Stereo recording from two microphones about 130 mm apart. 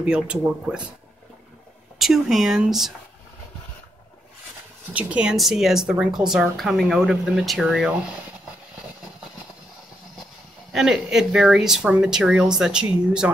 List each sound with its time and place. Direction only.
0.0 s speech: 10° right (ahead or behind)
2.0 s speech: centre (ahead or behind)
4.9 s speech: 10° right (ahead or behind)
10.7 s speech: 5° right (ahead or behind)